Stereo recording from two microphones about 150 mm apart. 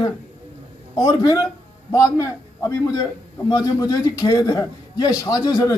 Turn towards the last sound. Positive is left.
turn(degrees=25)  # may be behind; listen again after turning